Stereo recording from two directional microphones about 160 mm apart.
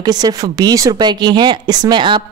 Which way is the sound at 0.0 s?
25° right (ahead or behind).